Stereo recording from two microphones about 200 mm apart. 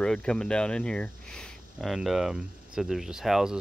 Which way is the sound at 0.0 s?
5° left (ahead or behind).